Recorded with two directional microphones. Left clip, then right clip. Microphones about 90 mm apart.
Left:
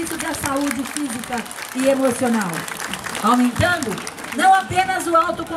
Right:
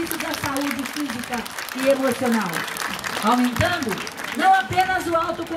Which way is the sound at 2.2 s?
30° left (ahead or behind).